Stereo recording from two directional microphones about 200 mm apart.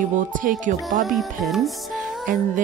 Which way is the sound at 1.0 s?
Centre (ahead or behind).